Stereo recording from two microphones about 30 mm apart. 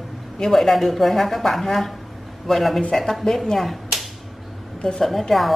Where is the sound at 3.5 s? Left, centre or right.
Centre.